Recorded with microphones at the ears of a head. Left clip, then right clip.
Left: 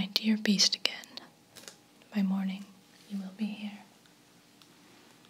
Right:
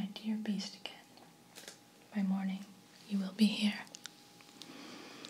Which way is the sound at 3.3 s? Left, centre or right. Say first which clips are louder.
Right 9 dB; right.